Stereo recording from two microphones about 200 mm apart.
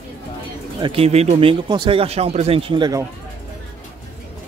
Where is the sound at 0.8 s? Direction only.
30° right (ahead or behind).